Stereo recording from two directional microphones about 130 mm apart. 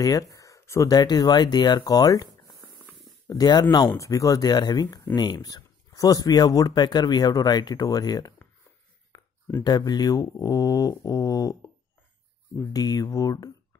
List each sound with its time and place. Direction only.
0.0 s speech: 25° left (ahead or behind)
3.3 s speech: 30° left (ahead or behind)
9.1 s a sound: 30° left (ahead or behind)
9.6 s speech: 30° left (ahead or behind)